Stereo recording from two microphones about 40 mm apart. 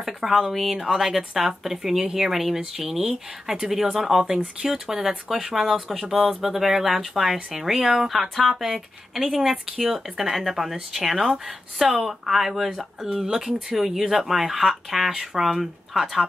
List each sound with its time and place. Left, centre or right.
0.0 s speech: centre